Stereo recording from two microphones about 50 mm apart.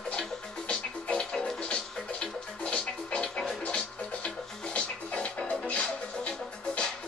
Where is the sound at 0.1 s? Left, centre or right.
Centre.